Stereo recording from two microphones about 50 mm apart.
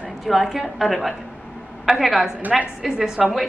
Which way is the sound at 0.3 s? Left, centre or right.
Centre.